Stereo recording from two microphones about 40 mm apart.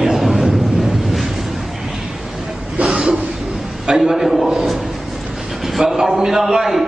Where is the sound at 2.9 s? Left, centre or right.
Right.